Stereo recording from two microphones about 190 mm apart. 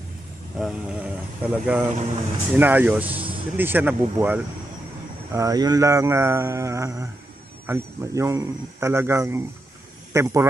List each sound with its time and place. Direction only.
0.6 s speech: 5° right (ahead or behind)
3.2 s music: 30° right (ahead or behind)
3.5 s speech: 10° right (ahead or behind)